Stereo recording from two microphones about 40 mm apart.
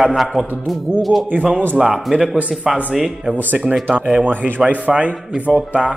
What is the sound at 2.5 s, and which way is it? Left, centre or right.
Speech, centre.